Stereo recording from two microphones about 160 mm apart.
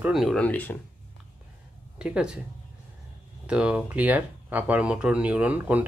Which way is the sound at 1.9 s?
5° right (ahead or behind).